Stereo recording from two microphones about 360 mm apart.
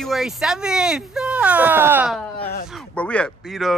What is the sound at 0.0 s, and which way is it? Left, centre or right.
Speech, centre.